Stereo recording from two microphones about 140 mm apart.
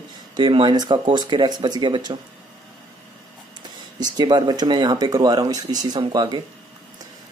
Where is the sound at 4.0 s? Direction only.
30° right (ahead or behind).